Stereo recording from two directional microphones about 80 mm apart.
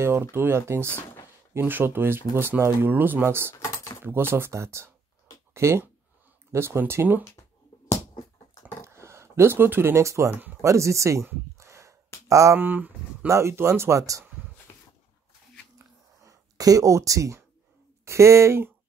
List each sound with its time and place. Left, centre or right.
0.0 s speech: right
3.5 s a sound: left
4.0 s speech: right
8.8 s speech: right
11.5 s a sound: right
12.3 s speech: right
12.5 s speech: right
13.3 s speech: right
15.8 s a sound: right
18.0 s speech: right